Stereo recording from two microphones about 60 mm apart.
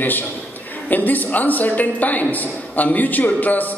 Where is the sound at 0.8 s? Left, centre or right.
Left.